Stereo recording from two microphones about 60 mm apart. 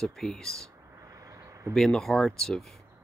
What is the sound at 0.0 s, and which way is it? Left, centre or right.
Speech, centre.